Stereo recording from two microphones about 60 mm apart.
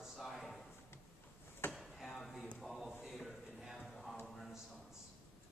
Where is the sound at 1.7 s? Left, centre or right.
Centre.